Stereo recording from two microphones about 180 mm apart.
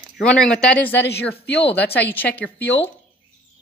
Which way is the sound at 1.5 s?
65° left (ahead or behind).